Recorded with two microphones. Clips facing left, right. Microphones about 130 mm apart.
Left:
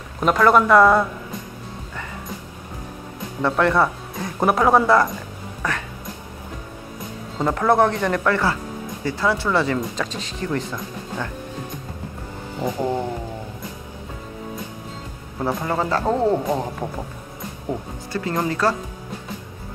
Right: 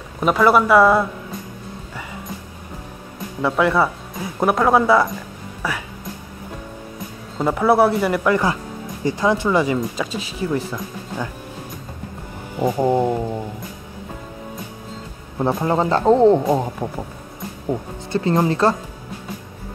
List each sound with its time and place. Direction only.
0.2 s speech: 5° right (ahead or behind)
3.4 s speech: 5° right (ahead or behind)
7.3 s speech: 10° right (ahead or behind)
12.5 s speech: 15° right (ahead or behind)
15.3 s speech: 20° right (ahead or behind)
18.1 s speech: 25° right (ahead or behind)